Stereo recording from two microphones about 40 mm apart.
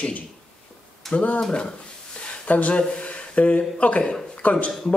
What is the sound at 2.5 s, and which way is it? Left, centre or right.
Speech, left.